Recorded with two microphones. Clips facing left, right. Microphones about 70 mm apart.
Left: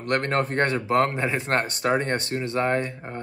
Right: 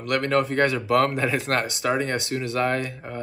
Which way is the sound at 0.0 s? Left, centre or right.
Left.